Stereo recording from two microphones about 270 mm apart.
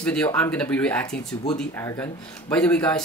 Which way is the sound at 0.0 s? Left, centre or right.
Centre.